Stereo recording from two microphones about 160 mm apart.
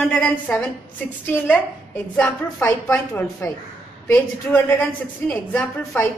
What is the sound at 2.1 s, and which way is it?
A woman's voice, 10° left (ahead or behind).